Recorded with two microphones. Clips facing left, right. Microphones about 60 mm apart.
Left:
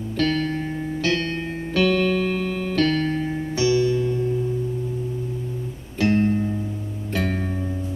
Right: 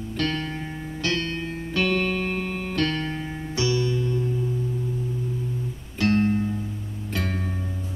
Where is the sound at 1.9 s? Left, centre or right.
Centre.